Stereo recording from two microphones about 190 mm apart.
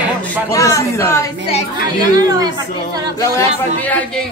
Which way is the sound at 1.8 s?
20° right (ahead or behind).